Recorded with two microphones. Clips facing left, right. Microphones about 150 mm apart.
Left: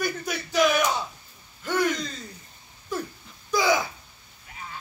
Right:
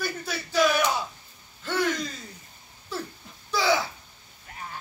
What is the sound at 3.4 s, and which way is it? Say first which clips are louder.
Babbling: left 2 dB; 15° left (ahead or behind).